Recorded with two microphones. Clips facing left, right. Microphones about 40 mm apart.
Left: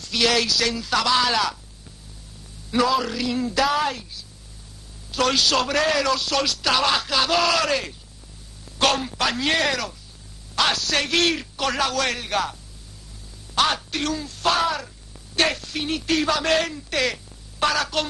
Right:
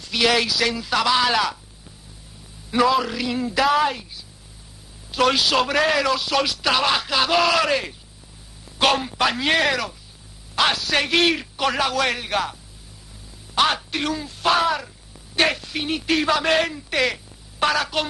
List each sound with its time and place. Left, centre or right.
0.0 s a man's voice: centre
2.7 s a man's voice: centre
13.6 s a man's voice: centre